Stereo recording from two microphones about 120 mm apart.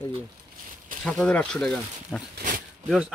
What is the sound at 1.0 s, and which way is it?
Speech, 10° left (ahead or behind).